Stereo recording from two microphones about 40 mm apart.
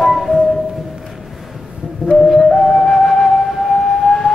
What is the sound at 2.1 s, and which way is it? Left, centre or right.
Flute, centre.